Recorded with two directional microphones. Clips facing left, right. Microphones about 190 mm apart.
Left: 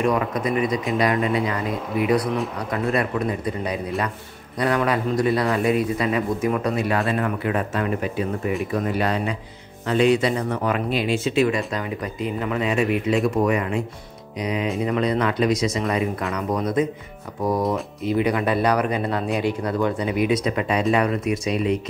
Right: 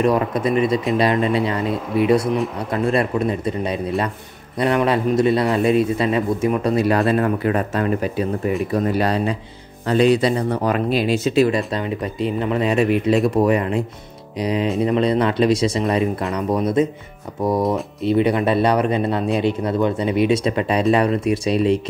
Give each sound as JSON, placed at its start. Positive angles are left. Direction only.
{"t": 0.1, "sound": "a man's voice", "side_deg": -30}
{"t": 17.6, "sound": "speech", "side_deg": 0}
{"t": 18.0, "sound": "a man's voice", "side_deg": -30}